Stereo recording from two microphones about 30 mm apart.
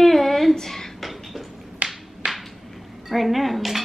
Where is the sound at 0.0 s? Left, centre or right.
Centre.